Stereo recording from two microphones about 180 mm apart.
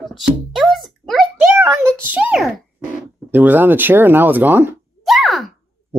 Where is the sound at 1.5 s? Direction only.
15° right (ahead or behind).